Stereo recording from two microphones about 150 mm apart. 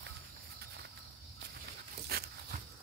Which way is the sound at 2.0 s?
90° right.